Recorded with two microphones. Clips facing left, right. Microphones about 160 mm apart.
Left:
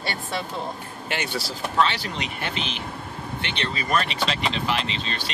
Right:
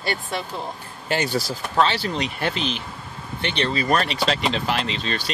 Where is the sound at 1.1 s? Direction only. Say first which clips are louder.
Right 6 dB; 40° right (ahead or behind).